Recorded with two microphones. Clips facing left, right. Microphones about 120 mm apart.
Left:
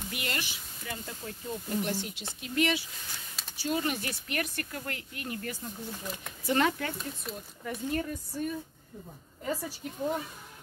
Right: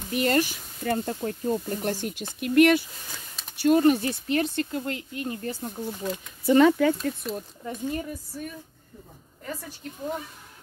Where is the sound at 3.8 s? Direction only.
35° right (ahead or behind).